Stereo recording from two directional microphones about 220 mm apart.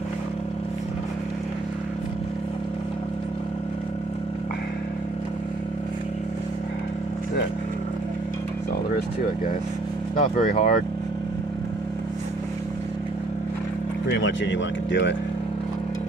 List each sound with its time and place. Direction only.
10.1 s speech: 40° left (ahead or behind)
14.1 s speech: 55° left (ahead or behind)